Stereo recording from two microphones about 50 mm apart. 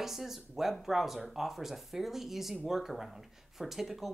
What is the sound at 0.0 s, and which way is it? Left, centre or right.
Speech, centre.